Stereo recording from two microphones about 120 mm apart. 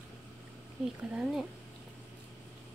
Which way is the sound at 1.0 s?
10° right (ahead or behind).